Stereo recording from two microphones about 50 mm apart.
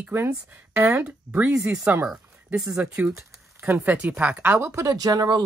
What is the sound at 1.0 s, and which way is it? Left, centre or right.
Speech, right.